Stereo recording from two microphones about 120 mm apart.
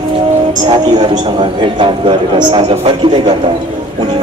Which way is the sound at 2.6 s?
55° right (ahead or behind).